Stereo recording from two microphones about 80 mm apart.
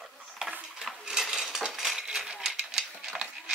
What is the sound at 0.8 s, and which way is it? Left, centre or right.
Cutlery, centre.